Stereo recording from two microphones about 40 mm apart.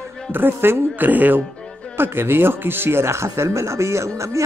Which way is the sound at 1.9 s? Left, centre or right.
Right.